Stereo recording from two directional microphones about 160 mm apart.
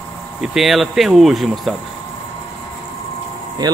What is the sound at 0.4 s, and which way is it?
Speech, centre (ahead or behind).